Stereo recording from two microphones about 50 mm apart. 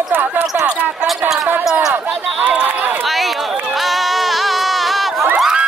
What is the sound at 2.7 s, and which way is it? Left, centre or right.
Run, right.